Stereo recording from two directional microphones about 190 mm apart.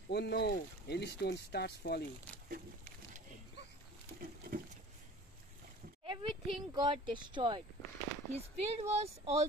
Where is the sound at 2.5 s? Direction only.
45° right (ahead or behind).